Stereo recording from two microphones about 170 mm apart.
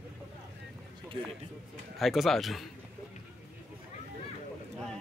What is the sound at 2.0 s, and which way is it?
Speech, centre (ahead or behind).